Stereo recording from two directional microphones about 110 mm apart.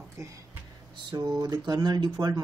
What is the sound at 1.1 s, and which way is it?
Speech, 35° right (ahead or behind).